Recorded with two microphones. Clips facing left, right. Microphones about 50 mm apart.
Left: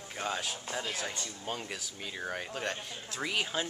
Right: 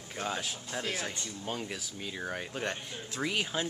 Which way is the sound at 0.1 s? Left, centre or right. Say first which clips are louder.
Even; centre.